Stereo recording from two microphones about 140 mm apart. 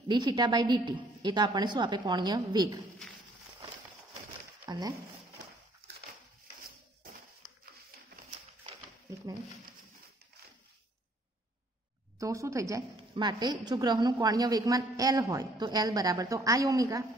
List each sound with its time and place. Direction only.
0.1 s a woman's voice: 30° right (ahead or behind)
4.6 s speech: 30° right (ahead or behind)
12.2 s a woman's voice: 20° right (ahead or behind)